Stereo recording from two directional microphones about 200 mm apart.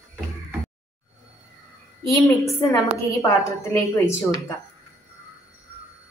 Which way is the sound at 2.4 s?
15° left (ahead or behind).